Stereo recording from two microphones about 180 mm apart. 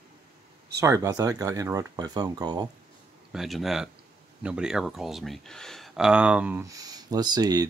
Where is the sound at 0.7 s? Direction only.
15° right (ahead or behind).